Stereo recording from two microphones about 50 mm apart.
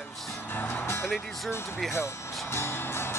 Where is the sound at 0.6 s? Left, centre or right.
Left.